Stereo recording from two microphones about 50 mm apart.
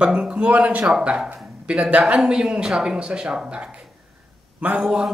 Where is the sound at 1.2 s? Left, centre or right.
Right.